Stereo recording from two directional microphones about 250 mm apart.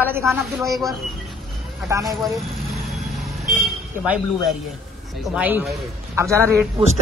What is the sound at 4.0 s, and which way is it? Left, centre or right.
A man's voice, centre.